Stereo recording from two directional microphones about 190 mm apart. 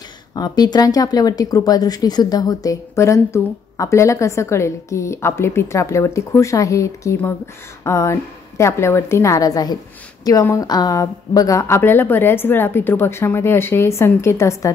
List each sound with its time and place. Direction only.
0.3 s speech: 20° left (ahead or behind)